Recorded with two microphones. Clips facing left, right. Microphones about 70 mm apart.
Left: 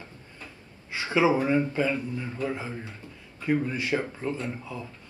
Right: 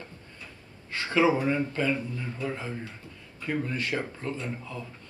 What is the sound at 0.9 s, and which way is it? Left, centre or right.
A man's voice, centre.